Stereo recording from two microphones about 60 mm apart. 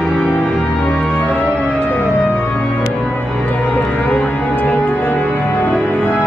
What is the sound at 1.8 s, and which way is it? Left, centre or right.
Music, left.